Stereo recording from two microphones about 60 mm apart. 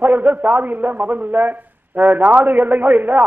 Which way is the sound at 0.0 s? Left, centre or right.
Right.